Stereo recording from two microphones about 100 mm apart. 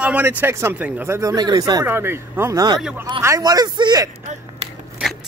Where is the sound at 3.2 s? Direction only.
35° right (ahead or behind).